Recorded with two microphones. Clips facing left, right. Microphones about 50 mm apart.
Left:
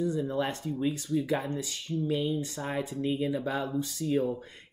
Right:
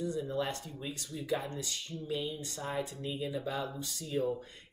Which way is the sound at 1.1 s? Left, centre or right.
Left.